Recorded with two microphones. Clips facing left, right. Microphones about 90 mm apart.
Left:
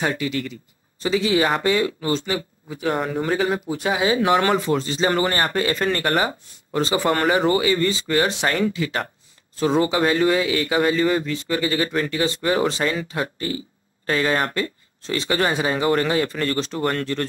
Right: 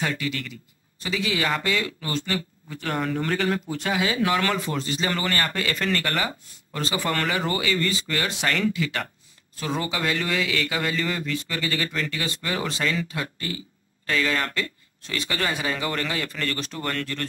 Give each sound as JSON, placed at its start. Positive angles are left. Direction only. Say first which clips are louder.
{"t": 0.0, "sound": "a man's voice", "louder": "left 4 dB", "side_deg": 25}
{"t": 3.9, "sound": "a man's voice", "louder": "left 5 dB", "side_deg": 25}